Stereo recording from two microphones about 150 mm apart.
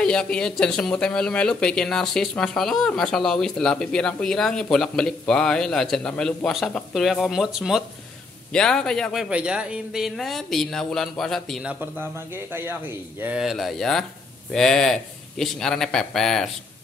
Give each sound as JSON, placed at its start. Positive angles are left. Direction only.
{"t": 0.0, "sound": "speech", "side_deg": 5}
{"t": 12.5, "sound": "speech", "side_deg": -15}